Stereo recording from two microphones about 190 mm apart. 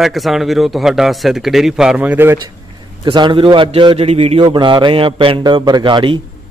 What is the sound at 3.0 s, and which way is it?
A man's voice, 25° right (ahead or behind).